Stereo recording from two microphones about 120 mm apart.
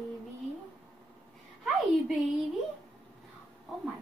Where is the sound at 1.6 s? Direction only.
Centre (ahead or behind).